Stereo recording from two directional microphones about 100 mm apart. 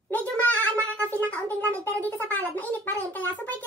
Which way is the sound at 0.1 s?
15° left (ahead or behind).